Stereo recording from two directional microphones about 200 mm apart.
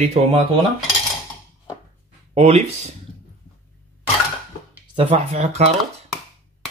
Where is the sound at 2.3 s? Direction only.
30° right (ahead or behind).